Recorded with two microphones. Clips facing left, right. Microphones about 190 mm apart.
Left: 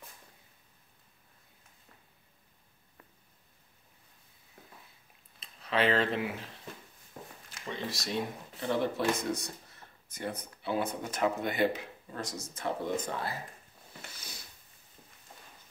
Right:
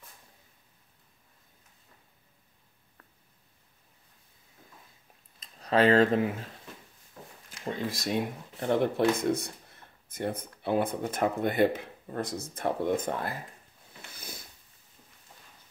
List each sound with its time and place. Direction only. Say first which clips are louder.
5.4 s speech: right 6 dB; 40° right (ahead or behind)
7.4 s speech: right 5 dB; 50° right (ahead or behind)
14.1 s a sound: right 5 dB; 55° right (ahead or behind)